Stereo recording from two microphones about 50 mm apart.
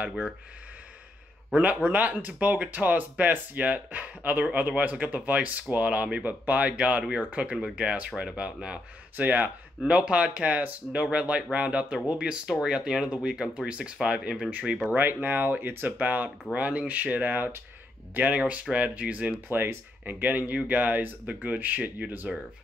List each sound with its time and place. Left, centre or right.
1.6 s speech: right
9.1 s speech: right
9.8 s speech: right
15.0 s speech: right
19.5 s speech: right